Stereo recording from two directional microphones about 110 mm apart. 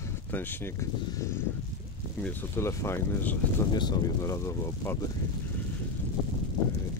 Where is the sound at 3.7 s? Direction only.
40° left (ahead or behind).